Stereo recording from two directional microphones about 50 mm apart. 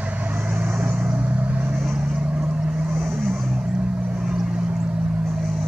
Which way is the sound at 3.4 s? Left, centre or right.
Right.